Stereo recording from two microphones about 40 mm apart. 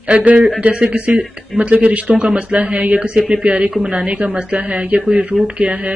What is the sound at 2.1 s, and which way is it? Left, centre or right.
Speech, right.